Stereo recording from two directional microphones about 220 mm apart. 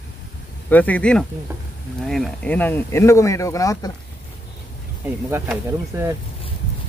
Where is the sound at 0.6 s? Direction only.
5° left (ahead or behind).